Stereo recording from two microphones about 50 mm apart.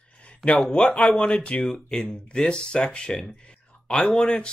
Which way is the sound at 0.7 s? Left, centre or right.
Left.